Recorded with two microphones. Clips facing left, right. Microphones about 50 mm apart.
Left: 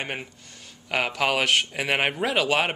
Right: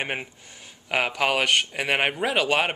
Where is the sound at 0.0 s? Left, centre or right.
Centre.